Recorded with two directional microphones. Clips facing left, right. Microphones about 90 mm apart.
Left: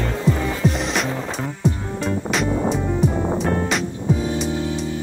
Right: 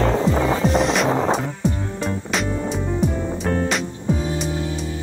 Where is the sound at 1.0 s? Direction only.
90° right.